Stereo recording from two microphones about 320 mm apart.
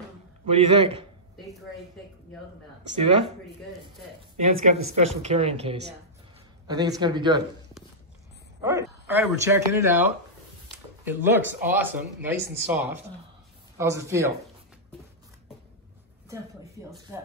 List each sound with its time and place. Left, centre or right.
0.5 s speech: centre
4.4 s speech: right
8.6 s a man's voice: centre
11.1 s speech: centre